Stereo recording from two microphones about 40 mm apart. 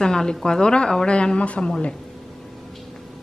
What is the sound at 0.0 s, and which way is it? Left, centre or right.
Speech, centre.